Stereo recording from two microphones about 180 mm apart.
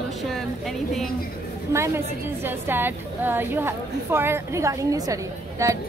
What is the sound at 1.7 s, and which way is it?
A woman's voice, 15° right (ahead or behind).